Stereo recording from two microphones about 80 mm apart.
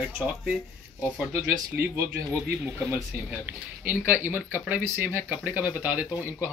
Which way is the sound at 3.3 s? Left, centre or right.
Right.